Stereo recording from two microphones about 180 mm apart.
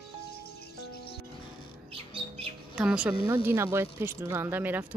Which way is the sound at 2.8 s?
5° right (ahead or behind).